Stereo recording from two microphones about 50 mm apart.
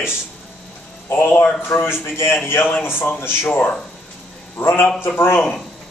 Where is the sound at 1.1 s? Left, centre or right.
Left.